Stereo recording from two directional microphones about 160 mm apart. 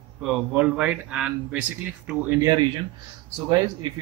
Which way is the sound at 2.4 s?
25° right (ahead or behind).